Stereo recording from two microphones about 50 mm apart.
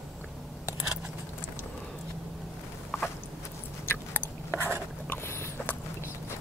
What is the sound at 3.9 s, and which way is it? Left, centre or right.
Chewing, left.